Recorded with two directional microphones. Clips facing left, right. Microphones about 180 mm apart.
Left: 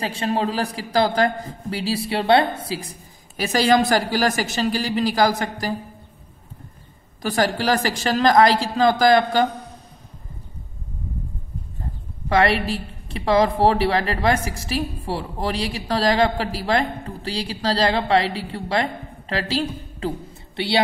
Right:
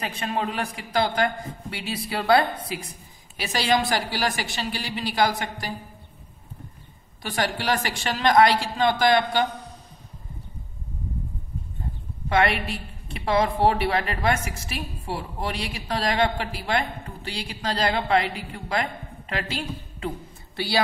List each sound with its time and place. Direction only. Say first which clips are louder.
0.0 s a woman's voice: left 5 dB; 30° left (ahead or behind)
7.2 s a woman's voice: left 6 dB; 40° left (ahead or behind)
12.3 s a woman's voice: left 4 dB; 35° left (ahead or behind)